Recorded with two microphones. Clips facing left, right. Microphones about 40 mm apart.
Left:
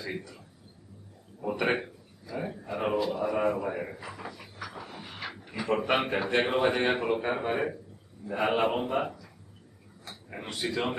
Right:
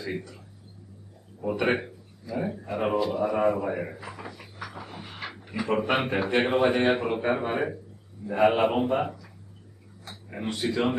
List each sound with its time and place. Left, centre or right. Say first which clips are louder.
0.0 s speech: right 3 dB; centre
1.4 s a man's voice: right 3 dB; centre